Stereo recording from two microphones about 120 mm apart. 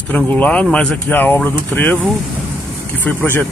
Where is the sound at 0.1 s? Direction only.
10° left (ahead or behind).